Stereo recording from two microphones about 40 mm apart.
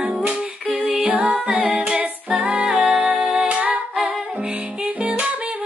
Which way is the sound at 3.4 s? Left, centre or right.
Right.